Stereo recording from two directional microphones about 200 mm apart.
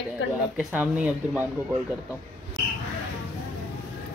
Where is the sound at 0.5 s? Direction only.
5° right (ahead or behind).